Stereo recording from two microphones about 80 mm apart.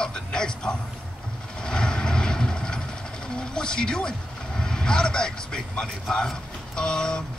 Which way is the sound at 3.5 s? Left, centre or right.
Centre.